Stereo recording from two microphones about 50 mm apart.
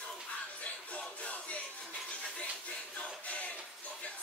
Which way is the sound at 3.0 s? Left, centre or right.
Left.